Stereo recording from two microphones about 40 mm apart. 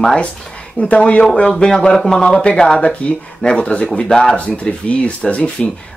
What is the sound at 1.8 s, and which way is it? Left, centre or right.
Speech, centre.